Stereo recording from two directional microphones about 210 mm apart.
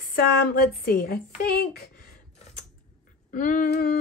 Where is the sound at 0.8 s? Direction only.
45° left (ahead or behind).